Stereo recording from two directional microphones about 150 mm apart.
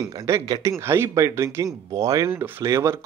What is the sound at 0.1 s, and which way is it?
Speech, 20° right (ahead or behind).